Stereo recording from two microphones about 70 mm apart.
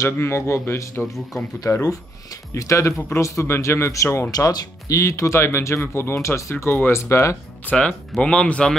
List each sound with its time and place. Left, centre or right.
0.0 s speech: left
1.7 s speech: left
4.3 s speech: left
6.5 s speech: left
7.7 s speech: left
8.2 s speech: centre